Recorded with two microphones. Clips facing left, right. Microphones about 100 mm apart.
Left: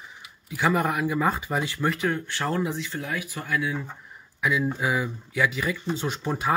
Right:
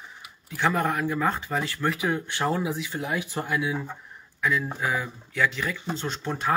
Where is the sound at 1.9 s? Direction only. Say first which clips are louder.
Right 1 dB; 10° right (ahead or behind).